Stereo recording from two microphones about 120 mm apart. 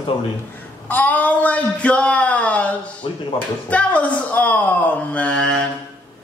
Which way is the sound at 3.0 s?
45° left (ahead or behind).